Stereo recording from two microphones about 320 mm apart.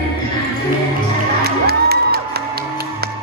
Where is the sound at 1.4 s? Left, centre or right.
Right.